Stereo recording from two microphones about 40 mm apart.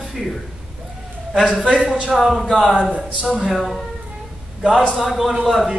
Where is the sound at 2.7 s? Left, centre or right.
Right.